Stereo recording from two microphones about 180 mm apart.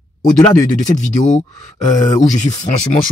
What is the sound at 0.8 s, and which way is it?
Speech, 40° left (ahead or behind).